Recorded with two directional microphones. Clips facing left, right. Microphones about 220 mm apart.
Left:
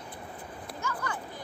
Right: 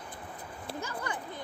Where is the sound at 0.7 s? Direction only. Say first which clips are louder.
Left 1 dB; 35° right (ahead or behind).